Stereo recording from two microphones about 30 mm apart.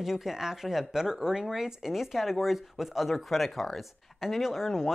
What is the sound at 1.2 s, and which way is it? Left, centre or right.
Speech, right.